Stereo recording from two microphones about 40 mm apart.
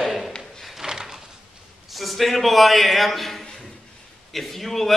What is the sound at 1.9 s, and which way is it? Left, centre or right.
A man's voice, centre.